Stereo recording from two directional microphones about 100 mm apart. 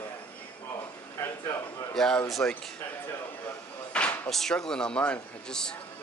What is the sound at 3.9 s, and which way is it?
Speech, 10° left (ahead or behind).